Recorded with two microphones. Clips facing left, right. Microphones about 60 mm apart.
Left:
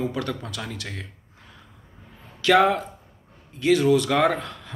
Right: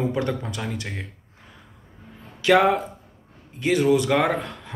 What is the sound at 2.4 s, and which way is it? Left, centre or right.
Speech, right.